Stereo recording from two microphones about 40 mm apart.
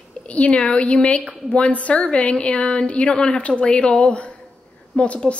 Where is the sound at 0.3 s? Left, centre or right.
Left.